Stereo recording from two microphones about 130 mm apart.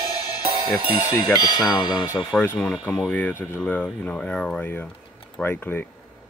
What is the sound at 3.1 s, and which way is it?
Speech, 15° left (ahead or behind).